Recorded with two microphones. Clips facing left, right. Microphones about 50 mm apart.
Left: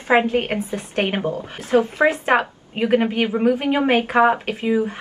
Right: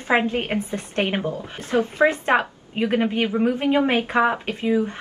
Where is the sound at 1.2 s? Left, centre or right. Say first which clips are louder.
Left 3 dB; centre.